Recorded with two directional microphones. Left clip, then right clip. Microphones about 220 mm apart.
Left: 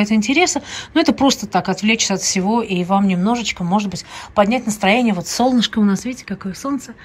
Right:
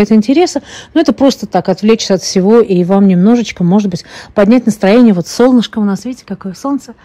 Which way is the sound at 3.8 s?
30° right (ahead or behind).